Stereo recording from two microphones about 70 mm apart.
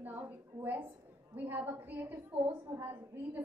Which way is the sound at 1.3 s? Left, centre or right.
Right.